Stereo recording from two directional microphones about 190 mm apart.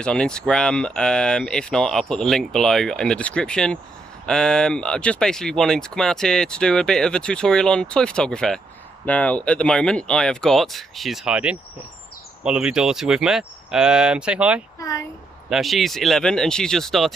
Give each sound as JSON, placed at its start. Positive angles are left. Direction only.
{"t": 0.0, "sound": "speech", "side_deg": 5}
{"t": 14.8, "sound": "speech", "side_deg": 20}
{"t": 15.5, "sound": "speech", "side_deg": 0}